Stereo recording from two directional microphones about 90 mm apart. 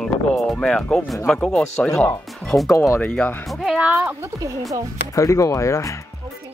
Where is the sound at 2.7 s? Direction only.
35° left (ahead or behind).